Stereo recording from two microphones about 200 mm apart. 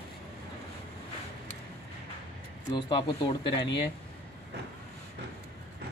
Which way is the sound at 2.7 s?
20° left (ahead or behind).